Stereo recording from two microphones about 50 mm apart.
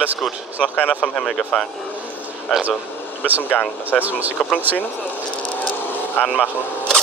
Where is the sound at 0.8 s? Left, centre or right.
Centre.